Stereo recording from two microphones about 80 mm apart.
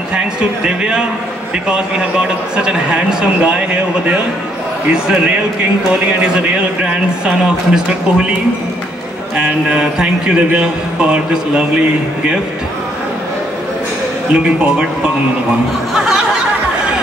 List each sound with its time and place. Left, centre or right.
0.1 s a man's voice: centre
9.4 s a man's voice: centre
14.3 s a man's voice: centre
15.9 s a sound: centre